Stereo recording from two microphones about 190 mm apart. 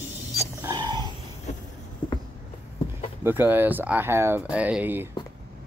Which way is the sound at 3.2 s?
10° right (ahead or behind).